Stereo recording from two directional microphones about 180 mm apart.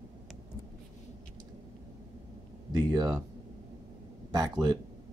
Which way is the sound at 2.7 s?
20° right (ahead or behind).